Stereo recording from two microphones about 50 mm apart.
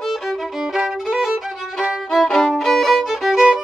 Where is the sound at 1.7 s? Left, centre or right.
Centre.